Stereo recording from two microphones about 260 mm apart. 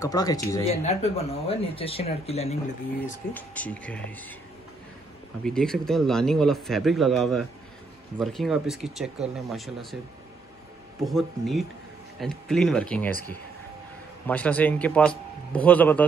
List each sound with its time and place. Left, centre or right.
0.0 s speech: centre
0.7 s speech: left
3.3 s speech: centre
5.4 s speech: centre
11.1 s speech: centre
14.2 s speech: centre